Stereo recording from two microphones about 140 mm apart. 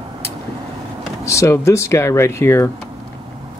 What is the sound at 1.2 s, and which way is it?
Speech, 20° left (ahead or behind).